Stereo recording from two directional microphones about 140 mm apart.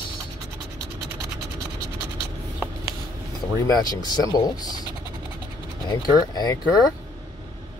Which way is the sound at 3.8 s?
30° left (ahead or behind).